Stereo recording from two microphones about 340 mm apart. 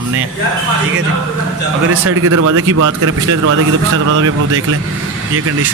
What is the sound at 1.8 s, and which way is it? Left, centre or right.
Speech, right.